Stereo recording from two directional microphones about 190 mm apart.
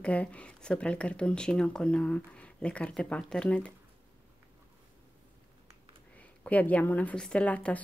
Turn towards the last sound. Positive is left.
turn(degrees=5)  # may be behind; listen again after turning